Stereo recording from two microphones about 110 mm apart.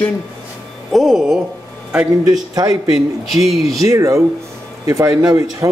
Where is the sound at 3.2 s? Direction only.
Centre (ahead or behind).